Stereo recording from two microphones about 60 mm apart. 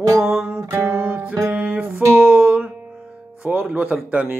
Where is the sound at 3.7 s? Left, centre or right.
Right.